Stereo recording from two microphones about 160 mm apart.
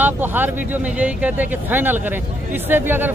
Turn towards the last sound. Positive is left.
turn(degrees=-10)  # may be behind; listen again after turning